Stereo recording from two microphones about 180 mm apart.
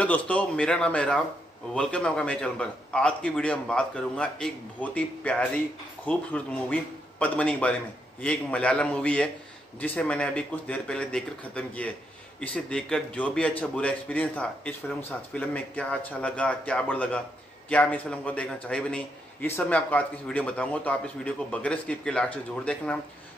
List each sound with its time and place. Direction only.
0.0 s a man's voice: 10° left (ahead or behind)